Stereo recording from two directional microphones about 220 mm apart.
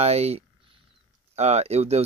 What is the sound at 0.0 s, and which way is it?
Speech, 30° right (ahead or behind).